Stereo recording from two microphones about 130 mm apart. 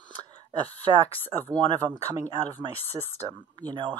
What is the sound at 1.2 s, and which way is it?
Speech, 15° left (ahead or behind).